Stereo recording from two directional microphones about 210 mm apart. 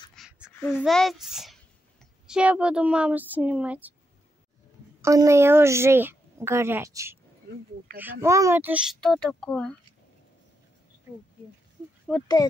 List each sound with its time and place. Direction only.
0.1 s a sound: centre (ahead or behind)
0.7 s a child's voice: 5° left (ahead or behind)
5.0 s a woman's voice: 15° right (ahead or behind)
9.0 s speech: centre (ahead or behind)
12.1 s speech: centre (ahead or behind)